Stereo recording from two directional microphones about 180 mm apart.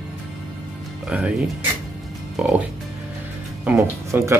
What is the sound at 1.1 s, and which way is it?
Speech, 5° right (ahead or behind).